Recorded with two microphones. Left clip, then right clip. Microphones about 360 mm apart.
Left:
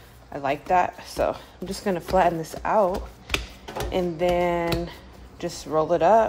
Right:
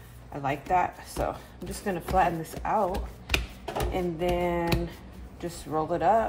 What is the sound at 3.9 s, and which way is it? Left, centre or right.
Speech, left.